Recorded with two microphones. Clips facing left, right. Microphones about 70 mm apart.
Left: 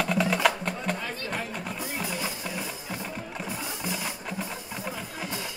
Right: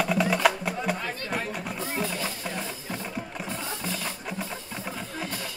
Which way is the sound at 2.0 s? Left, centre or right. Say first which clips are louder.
Right 3 dB; centre.